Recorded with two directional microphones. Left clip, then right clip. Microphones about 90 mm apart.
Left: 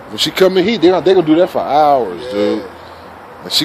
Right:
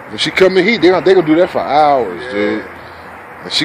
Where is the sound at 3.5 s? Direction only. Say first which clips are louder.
Left 1 dB; 20° left (ahead or behind).